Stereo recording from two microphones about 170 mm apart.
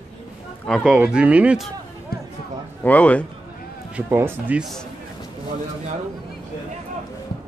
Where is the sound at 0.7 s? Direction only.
5° right (ahead or behind).